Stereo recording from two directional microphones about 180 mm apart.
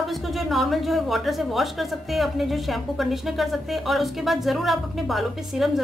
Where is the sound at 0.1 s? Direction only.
Centre (ahead or behind).